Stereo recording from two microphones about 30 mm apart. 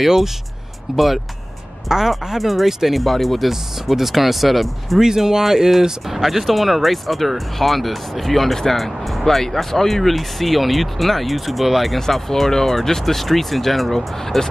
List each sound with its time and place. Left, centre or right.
0.0 s speech: centre
1.9 s speech: centre
2.3 s speech: centre
3.8 s speech: centre
5.0 s speech: centre
12.3 s speech: centre